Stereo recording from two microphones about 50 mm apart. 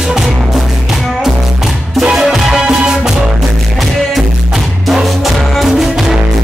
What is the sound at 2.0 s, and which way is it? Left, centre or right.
Music, centre.